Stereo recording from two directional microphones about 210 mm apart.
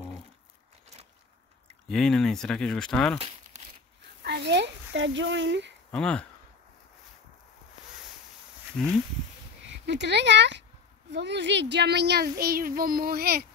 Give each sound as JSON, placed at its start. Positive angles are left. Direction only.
{"t": 1.9, "sound": "speech", "side_deg": 5}
{"t": 3.5, "sound": "a sound", "side_deg": -35}
{"t": 4.2, "sound": "speech", "side_deg": -55}
{"t": 5.9, "sound": "speech", "side_deg": 5}
{"t": 9.8, "sound": "a child's voice", "side_deg": -55}